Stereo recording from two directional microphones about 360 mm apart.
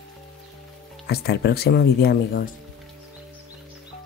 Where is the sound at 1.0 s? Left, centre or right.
Left.